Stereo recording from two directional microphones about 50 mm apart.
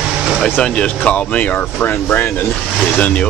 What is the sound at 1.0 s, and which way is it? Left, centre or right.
Speech, left.